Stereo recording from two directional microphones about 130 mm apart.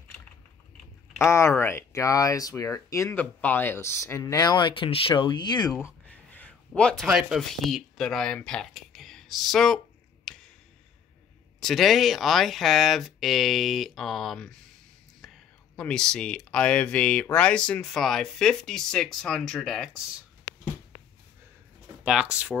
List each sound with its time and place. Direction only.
1.2 s speech: 20° left (ahead or behind)
6.0 s a sound: 10° left (ahead or behind)
7.1 s speech: 5° right (ahead or behind)
10.3 s a sound: 5° left (ahead or behind)
11.6 s speech: centre (ahead or behind)
15.2 s whispering: centre (ahead or behind)
15.7 s speech: 10° left (ahead or behind)
22.0 s speech: 5° right (ahead or behind)